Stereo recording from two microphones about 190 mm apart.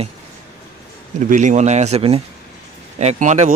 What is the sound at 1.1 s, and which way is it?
Speech, 40° right (ahead or behind).